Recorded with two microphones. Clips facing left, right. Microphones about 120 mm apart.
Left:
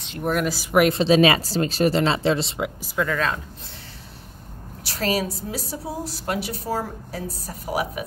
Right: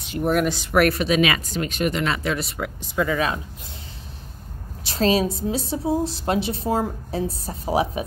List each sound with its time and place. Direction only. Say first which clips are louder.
0.0 s speech: right 3 dB; centre (ahead or behind)
0.7 s speech: left 2 dB; 15° left (ahead or behind)
0.9 s speech: left 4 dB; 30° left (ahead or behind)
2.8 s speech: right 3 dB; 5° right (ahead or behind)
4.8 s a woman's voice: right 4 dB; 20° right (ahead or behind)